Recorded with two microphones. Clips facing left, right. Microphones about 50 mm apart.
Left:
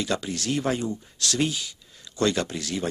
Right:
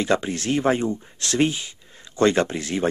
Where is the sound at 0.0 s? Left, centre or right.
Right.